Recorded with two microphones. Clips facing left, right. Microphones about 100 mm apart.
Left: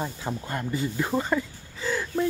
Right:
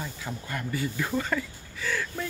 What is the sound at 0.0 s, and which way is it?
Speech, 30° left (ahead or behind).